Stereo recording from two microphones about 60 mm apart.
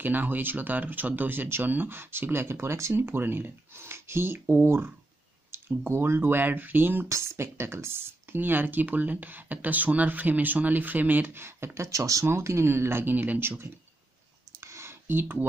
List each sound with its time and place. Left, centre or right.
0.0 s speech: right
7.1 s speech: right
11.4 s speech: right
12.3 s speech: right
13.1 s speech: right
14.6 s a sound: right